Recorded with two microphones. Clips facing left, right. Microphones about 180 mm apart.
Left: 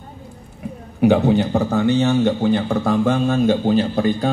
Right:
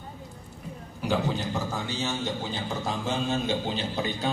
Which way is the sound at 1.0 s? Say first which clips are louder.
Left 13 dB; 65° left (ahead or behind).